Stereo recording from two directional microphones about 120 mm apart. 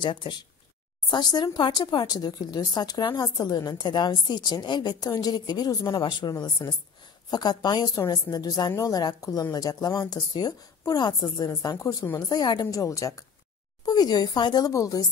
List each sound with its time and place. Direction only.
0.0 s a woman's voice: 40° left (ahead or behind)